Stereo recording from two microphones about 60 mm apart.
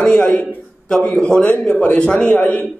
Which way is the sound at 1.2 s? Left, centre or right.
Centre.